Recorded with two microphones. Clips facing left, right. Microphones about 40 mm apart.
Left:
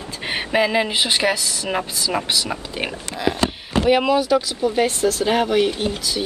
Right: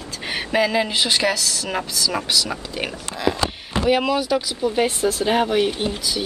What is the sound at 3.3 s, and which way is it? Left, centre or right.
Speech, left.